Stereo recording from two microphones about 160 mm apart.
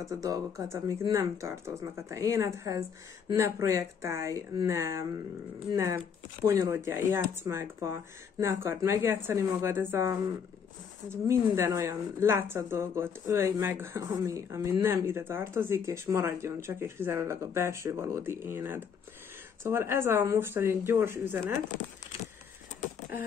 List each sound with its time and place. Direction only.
0.2 s a woman's voice: 20° right (ahead or behind)